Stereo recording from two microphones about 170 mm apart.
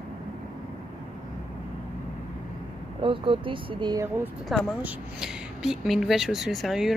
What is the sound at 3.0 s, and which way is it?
Speech, 30° right (ahead or behind).